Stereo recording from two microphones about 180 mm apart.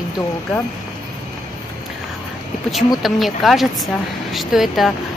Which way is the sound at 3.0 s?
Centre (ahead or behind).